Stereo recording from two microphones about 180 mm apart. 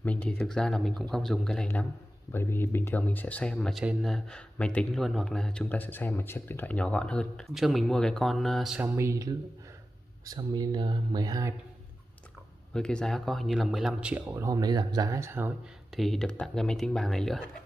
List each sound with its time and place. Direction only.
0.0 s speech: 5° left (ahead or behind)
8.8 s speech: 15° right (ahead or behind)
12.7 s speech: 5° left (ahead or behind)
14.2 s speech: 15° right (ahead or behind)
16.0 s speech: centre (ahead or behind)